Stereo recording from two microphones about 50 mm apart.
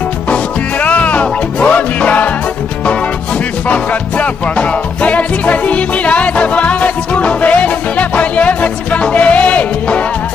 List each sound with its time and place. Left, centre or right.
0.8 s music: left
3.6 s music: left